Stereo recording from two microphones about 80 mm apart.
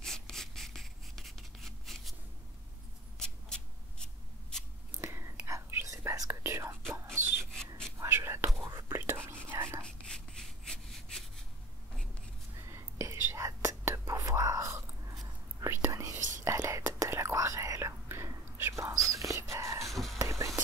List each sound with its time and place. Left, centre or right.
0.0 s writing: centre
3.2 s a sound: centre
5.0 s whispering: right
7.2 s rub: right
8.2 s whispering: right
9.8 s a sound: centre
12.6 s whispering: right
19.8 s whispering: centre
20.2 s whispering: right